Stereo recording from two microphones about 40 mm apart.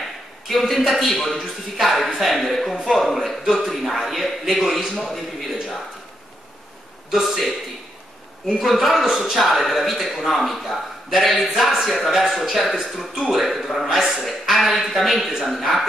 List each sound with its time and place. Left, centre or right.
0.0 s a sound: centre
0.8 s a man's voice: centre
7.1 s a man's voice: centre
8.5 s a man's voice: centre
13.8 s a man's voice: centre
14.4 s a man's voice: centre